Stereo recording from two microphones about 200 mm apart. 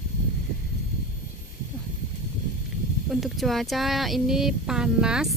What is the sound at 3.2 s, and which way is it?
Speech, centre (ahead or behind).